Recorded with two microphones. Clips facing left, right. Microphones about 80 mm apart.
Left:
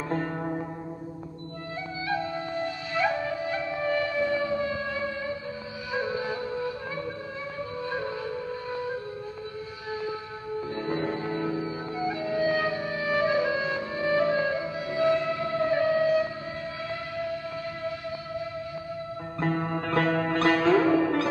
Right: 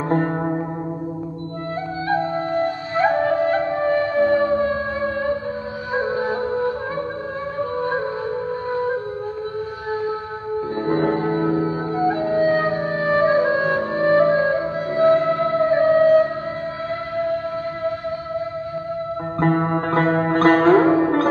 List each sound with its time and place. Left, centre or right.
0.1 s music: right
2.0 s flute: right
5.9 s music: right
10.8 s music: right
19.4 s music: right